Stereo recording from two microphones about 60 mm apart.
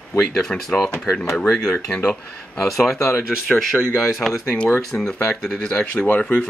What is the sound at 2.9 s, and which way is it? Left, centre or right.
Speech, left.